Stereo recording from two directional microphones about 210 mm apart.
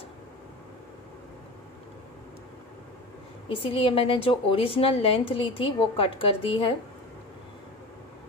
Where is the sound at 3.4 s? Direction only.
25° left (ahead or behind).